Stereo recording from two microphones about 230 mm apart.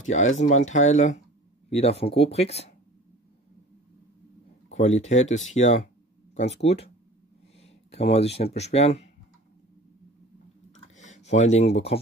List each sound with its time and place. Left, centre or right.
0.0 s speech: left
4.6 s speech: left
11.0 s speech: left